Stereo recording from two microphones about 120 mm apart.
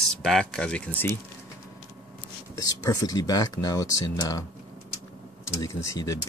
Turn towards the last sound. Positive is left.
turn(degrees=25)  # may be behind; listen again after turning